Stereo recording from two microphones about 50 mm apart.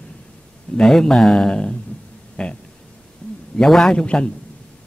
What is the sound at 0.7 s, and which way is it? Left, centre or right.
A man's voice, centre.